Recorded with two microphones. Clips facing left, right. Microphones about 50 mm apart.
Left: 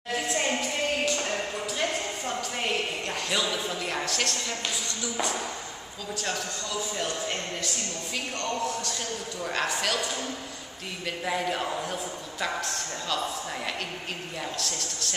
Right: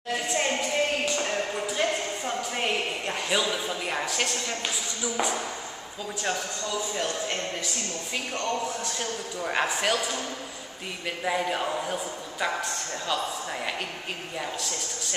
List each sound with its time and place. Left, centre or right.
0.3 s music: centre
1.1 s a sound: centre
5.0 s a man's voice: centre
8.4 s a man's voice: centre
9.9 s a man's voice: centre
14.4 s a man's voice: centre